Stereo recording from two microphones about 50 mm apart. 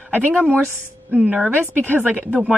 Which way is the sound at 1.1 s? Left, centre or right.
Right.